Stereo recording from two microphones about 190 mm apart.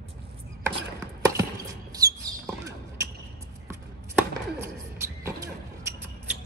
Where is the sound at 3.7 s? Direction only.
15° right (ahead or behind).